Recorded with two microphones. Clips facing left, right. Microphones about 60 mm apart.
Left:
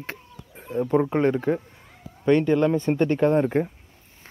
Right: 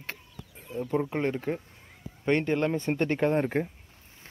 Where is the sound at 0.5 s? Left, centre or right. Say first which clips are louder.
Left 8 dB; left.